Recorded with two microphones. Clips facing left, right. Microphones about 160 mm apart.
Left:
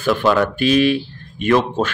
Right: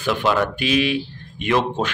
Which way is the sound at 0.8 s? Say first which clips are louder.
Left 5 dB; 45° left (ahead or behind).